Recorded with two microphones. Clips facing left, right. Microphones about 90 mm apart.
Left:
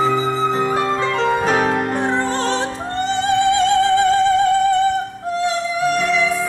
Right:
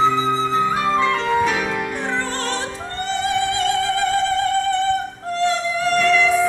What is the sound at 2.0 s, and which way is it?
Music, 20° left (ahead or behind).